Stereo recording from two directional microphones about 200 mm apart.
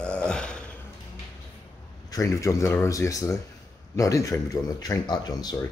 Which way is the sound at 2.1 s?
15° left (ahead or behind).